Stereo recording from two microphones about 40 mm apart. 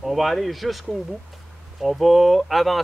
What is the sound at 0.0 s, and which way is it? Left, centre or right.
Speech, centre.